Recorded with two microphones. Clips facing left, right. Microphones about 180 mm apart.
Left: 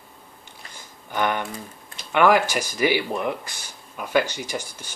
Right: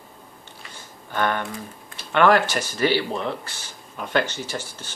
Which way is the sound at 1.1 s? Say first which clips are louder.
Even; 15° left (ahead or behind).